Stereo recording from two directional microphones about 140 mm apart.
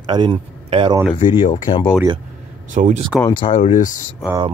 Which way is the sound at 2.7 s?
65° right (ahead or behind).